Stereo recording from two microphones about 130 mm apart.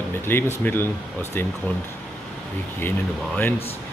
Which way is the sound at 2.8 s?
15° left (ahead or behind).